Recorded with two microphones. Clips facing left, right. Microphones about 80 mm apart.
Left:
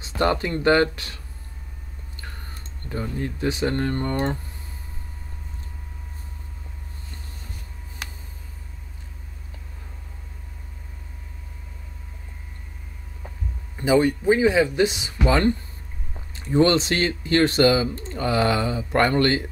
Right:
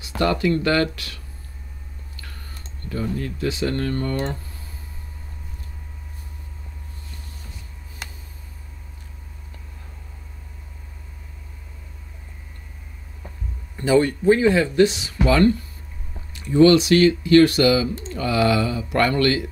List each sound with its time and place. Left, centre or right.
0.2 s speech: left
13.7 s speech: centre